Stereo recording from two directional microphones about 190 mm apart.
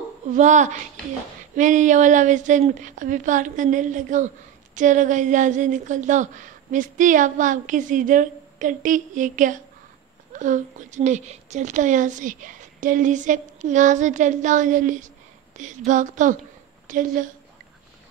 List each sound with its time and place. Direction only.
0.3 s speech: 40° right (ahead or behind)